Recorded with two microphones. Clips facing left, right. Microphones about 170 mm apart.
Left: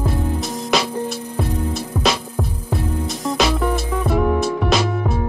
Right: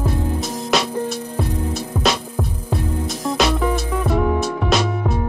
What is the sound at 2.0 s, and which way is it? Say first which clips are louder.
Music: even; centre (ahead or behind).